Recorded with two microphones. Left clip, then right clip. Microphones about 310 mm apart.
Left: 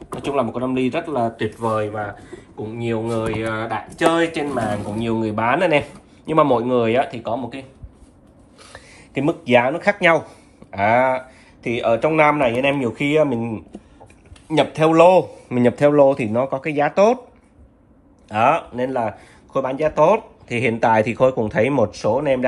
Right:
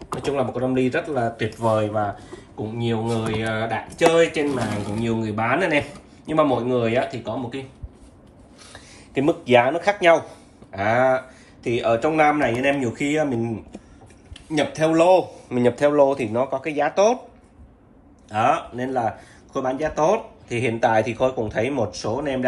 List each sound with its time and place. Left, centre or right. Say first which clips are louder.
0.2 s speech: left 2 dB; centre
1.3 s speech: even; centre
8.7 s a sound: right 1 dB; left
9.7 s speech: left 1 dB; left
18.3 s speech: left 3 dB; centre